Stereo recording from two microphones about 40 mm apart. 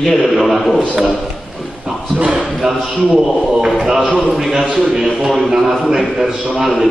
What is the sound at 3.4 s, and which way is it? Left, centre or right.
Speech, centre.